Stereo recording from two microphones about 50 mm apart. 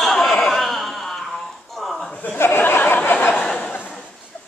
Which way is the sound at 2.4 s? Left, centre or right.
Left.